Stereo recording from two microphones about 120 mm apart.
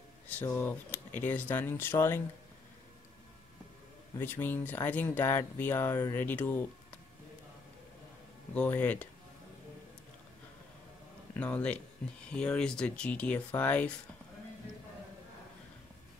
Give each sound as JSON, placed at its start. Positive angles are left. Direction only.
{"t": 0.3, "sound": "speech", "side_deg": 15}
{"t": 4.2, "sound": "speech", "side_deg": 15}
{"t": 8.5, "sound": "speech", "side_deg": 10}
{"t": 11.3, "sound": "speech", "side_deg": 10}